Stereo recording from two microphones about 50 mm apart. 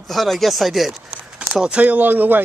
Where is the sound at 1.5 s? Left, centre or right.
Right.